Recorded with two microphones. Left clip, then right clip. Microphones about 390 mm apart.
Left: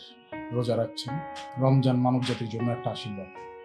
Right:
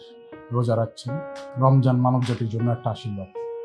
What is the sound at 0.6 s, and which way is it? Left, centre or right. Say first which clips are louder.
Speech: right 3 dB; right.